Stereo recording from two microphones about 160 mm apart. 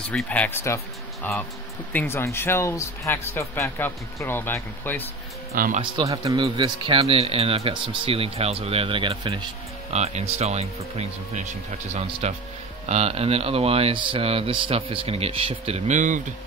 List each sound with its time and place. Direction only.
0.1 s a man's voice: 10° left (ahead or behind)
5.5 s speech: 60° right (ahead or behind)
5.8 s speech: 25° right (ahead or behind)
9.9 s speech: 40° right (ahead or behind)